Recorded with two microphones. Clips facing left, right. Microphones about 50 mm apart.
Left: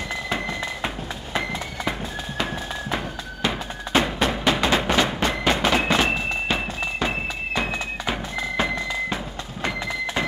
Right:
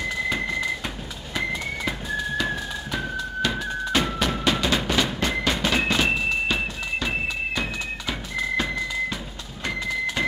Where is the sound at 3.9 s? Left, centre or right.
Left.